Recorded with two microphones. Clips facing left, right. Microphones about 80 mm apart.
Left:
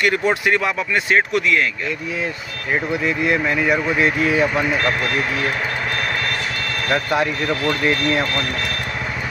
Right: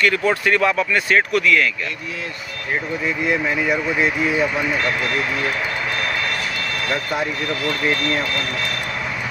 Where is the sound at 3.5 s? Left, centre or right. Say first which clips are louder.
Left 2 dB; left.